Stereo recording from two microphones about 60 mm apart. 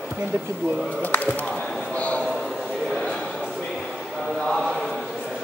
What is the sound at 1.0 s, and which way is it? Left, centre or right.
Speech, left.